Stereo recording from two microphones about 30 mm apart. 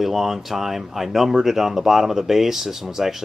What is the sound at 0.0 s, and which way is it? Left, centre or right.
Speech, centre.